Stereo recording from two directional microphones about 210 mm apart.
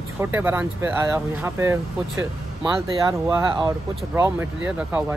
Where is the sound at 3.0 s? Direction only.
20° right (ahead or behind).